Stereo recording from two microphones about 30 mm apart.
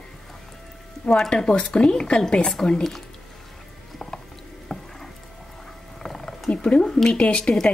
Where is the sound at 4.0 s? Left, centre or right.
Centre.